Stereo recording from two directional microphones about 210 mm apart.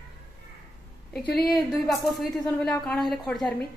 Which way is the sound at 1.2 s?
50° left (ahead or behind).